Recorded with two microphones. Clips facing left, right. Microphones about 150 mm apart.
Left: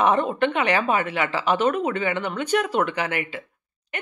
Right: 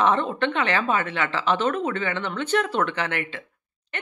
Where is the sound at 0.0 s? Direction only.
10° left (ahead or behind).